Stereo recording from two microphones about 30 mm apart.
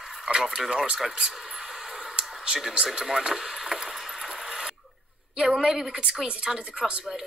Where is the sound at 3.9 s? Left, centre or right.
Centre.